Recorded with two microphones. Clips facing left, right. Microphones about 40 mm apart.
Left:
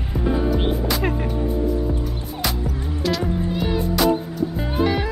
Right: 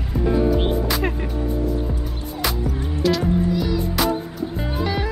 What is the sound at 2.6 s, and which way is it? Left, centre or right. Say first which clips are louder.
Music: right 3 dB; centre.